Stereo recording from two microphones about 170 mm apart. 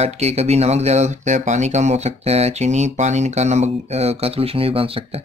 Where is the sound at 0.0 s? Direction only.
40° right (ahead or behind).